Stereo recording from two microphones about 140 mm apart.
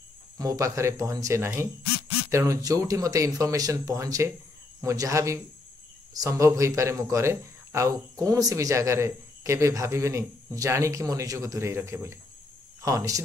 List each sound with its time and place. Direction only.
0.4 s speech: 25° right (ahead or behind)